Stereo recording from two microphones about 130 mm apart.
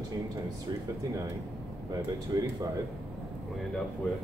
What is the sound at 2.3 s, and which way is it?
Speech, 30° right (ahead or behind).